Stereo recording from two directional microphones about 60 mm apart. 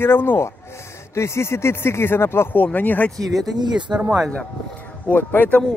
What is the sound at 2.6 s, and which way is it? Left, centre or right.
Speech, left.